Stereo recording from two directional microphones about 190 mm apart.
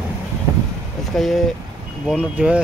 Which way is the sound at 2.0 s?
5° right (ahead or behind).